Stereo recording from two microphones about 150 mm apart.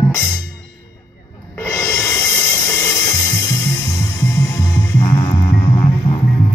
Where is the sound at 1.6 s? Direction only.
15° left (ahead or behind).